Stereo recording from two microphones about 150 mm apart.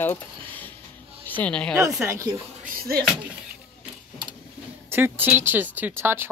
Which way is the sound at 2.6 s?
90° right.